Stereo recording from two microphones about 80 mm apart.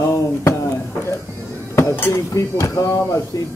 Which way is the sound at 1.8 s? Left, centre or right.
Left.